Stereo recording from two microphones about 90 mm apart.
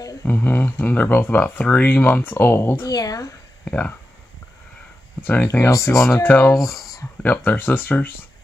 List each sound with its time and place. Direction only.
0.3 s speech: 20° left (ahead or behind)
2.8 s speech: 45° left (ahead or behind)
5.2 s speech: 20° left (ahead or behind)
6.1 s speech: 20° left (ahead or behind)